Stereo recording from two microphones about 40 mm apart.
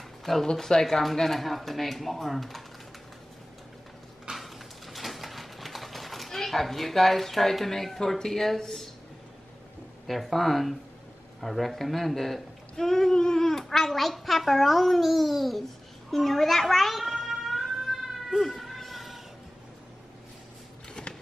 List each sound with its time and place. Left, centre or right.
0.2 s speech: centre
0.5 s speech: centre
0.8 s a woman's voice: centre
4.3 s a sound: centre
8.2 s speech: centre
10.0 s a woman's voice: centre
17.3 s music: centre
18.4 s a sound: centre
21.0 s a sound: centre